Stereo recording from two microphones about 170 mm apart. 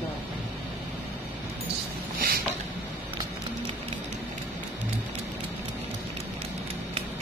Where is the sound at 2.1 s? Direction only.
60° right (ahead or behind).